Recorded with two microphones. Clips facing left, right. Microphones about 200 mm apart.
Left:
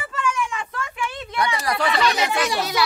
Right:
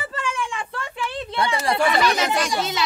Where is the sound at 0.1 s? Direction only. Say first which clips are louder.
Left 7 dB; 30° right (ahead or behind).